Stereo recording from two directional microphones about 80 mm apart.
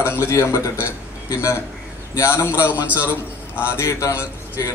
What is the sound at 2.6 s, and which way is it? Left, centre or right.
Speech, centre.